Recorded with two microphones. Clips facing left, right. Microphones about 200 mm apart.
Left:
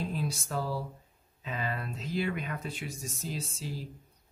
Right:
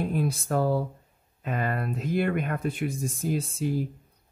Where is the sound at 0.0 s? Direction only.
55° right (ahead or behind).